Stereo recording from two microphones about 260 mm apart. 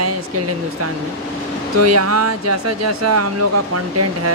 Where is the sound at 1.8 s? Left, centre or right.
Right.